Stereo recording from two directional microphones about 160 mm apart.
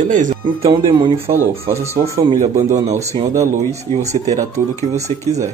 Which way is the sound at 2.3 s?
45° right (ahead or behind).